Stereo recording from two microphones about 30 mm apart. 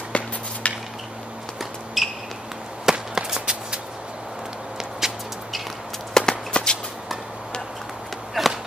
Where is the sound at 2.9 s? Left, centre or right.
Centre.